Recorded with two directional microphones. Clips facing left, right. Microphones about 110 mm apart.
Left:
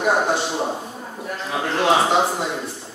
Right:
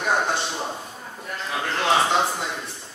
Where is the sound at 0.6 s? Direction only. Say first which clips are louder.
Left 6 dB; 20° left (ahead or behind).